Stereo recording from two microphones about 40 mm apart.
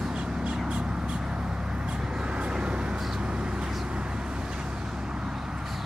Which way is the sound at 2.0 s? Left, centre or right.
Right.